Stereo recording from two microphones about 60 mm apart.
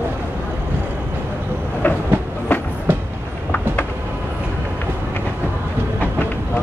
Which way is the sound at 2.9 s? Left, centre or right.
Right.